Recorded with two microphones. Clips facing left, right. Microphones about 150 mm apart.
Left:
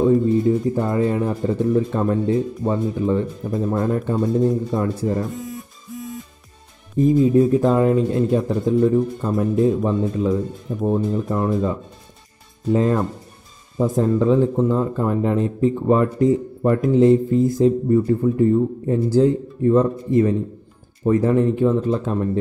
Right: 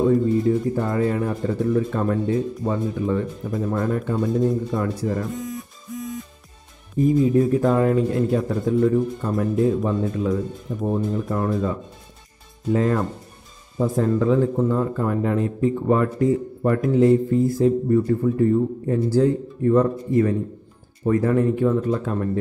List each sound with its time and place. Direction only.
0.0 s speech: 20° left (ahead or behind)
7.0 s speech: 25° left (ahead or behind)
12.7 s speech: 20° left (ahead or behind)